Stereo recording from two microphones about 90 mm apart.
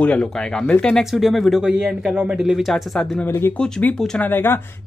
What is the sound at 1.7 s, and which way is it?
A man's voice, 15° right (ahead or behind).